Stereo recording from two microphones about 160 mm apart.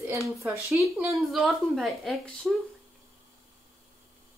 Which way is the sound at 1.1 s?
Centre (ahead or behind).